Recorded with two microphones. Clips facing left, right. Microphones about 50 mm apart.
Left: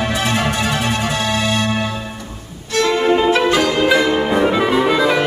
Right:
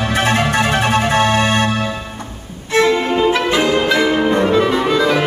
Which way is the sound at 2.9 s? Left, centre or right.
Centre.